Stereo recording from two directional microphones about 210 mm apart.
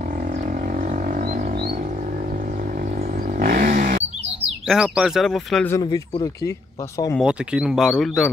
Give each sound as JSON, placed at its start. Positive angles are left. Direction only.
{"t": 0.3, "sound": "a sound", "side_deg": -40}
{"t": 3.0, "sound": "vehicle", "side_deg": -40}
{"t": 4.0, "sound": "bird", "side_deg": -5}
{"t": 5.7, "sound": "speech", "side_deg": 15}
{"t": 7.2, "sound": "speech", "side_deg": -5}